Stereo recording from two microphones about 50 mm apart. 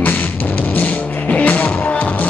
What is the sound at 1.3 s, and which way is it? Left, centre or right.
Music, left.